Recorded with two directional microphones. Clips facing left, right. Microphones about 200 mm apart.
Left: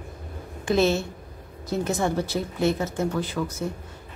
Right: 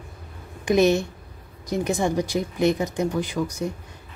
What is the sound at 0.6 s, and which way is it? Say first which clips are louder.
Speech: right 3 dB; 15° right (ahead or behind).